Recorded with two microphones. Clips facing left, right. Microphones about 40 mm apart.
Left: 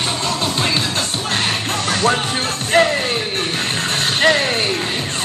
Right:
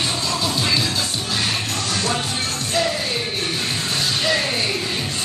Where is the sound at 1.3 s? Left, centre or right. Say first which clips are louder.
Left 4 dB; left.